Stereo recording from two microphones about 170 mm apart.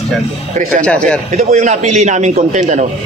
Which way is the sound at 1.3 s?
45° right (ahead or behind).